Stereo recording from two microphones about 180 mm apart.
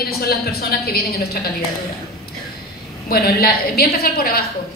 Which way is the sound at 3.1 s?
55° left (ahead or behind).